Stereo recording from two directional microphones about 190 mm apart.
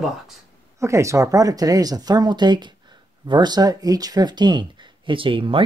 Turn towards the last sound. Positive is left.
turn(degrees=-25)  # may be behind; listen again after turning